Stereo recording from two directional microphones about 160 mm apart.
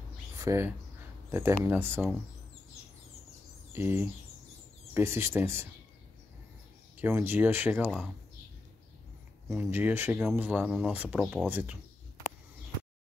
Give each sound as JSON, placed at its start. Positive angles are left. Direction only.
{"t": 0.4, "sound": "speech", "side_deg": -20}
{"t": 3.7, "sound": "speech", "side_deg": -15}
{"t": 7.0, "sound": "speech", "side_deg": -15}
{"t": 9.5, "sound": "speech", "side_deg": -15}